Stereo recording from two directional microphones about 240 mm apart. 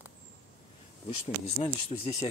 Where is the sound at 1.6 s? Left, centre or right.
Left.